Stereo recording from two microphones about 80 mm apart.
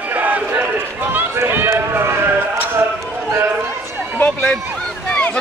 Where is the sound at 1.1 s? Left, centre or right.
Right.